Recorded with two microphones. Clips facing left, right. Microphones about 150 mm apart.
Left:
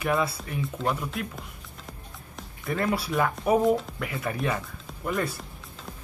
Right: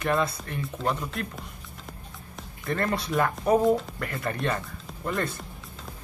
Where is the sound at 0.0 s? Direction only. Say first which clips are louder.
Even; 5° left (ahead or behind).